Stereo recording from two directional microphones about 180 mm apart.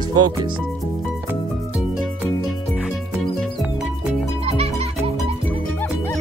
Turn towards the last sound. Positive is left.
turn(degrees=-35)  # may be behind; listen again after turning